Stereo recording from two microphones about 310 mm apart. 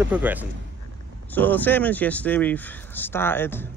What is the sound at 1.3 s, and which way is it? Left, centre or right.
Speech, centre.